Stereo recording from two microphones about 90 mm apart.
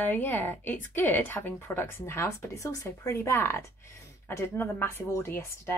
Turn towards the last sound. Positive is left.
turn(degrees=30)  # may be behind; listen again after turning